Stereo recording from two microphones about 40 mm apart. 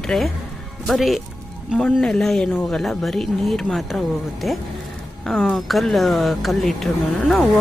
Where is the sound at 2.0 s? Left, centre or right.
Centre.